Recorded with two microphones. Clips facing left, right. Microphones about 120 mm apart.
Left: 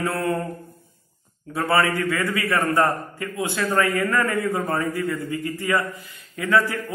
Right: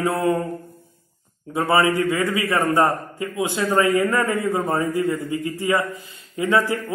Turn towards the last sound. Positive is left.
turn(degrees=-20)  # may be behind; listen again after turning